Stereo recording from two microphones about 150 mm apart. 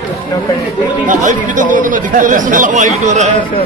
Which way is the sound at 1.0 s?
60° right (ahead or behind).